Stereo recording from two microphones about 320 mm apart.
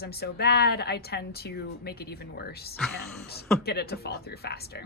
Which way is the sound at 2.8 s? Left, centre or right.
Centre.